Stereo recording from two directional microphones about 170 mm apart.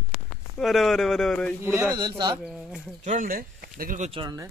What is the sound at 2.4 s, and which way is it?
Speech, 5° right (ahead or behind).